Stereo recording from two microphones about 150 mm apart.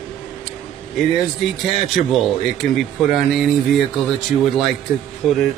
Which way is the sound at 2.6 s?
Centre (ahead or behind).